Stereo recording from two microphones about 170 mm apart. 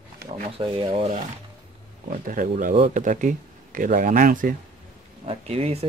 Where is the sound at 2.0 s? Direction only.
50° right (ahead or behind).